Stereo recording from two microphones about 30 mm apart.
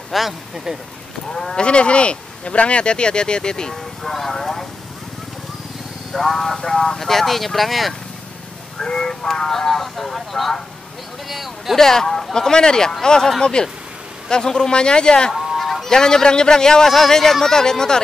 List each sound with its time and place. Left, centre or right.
0.1 s speech: centre
1.3 s a man's voice: left
1.7 s speech: left
3.7 s vehicle: centre
6.1 s speech: centre
8.8 s a man's voice: left; by 10.5 s centre
11.2 s speech: centre
11.7 s a man's voice: centre
15.5 s honk: centre
15.8 s a man's voice: centre